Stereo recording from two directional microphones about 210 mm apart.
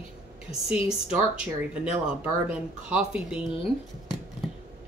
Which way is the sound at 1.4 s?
5° right (ahead or behind).